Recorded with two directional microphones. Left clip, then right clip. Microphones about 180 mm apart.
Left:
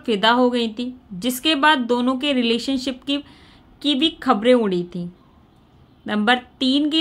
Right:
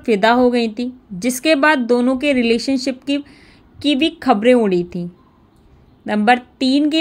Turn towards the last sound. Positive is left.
turn(degrees=-10)  # may be behind; listen again after turning